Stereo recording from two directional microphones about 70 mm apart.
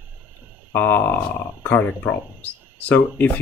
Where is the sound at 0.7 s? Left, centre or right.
Left.